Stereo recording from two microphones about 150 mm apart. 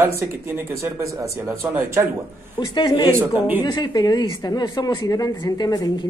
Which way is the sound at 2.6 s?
25° left (ahead or behind).